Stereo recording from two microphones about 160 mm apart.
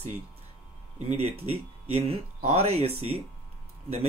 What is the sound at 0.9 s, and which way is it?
Speech, 45° right (ahead or behind).